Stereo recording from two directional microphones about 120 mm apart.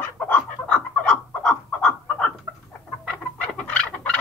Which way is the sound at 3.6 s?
10° left (ahead or behind).